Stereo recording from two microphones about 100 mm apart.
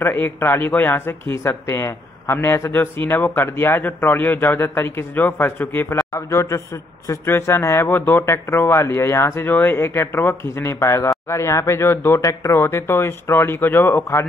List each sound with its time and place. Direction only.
0.0 s a man's voice: 20° left (ahead or behind)